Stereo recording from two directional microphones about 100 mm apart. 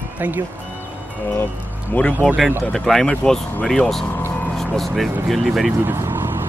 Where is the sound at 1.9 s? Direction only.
15° left (ahead or behind).